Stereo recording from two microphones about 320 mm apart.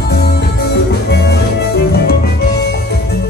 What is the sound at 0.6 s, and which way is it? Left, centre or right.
Music, left.